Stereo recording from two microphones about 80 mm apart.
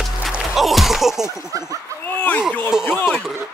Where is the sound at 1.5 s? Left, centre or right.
Right.